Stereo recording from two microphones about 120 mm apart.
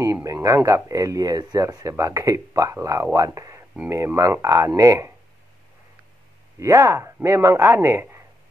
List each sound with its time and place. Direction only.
0.0 s speech: 25° right (ahead or behind)
6.6 s speech: 25° right (ahead or behind)